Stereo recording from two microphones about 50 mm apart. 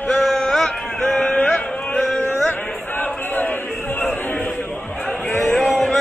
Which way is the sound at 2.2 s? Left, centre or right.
Left.